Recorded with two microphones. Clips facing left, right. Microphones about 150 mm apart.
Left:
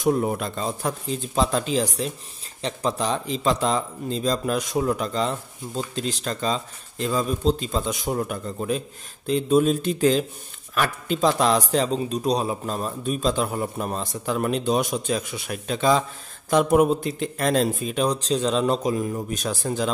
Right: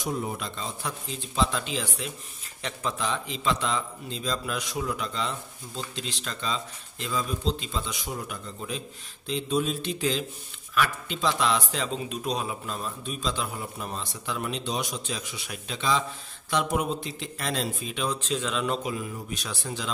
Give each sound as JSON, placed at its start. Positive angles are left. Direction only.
{"t": 0.0, "sound": "a man's voice", "side_deg": 55}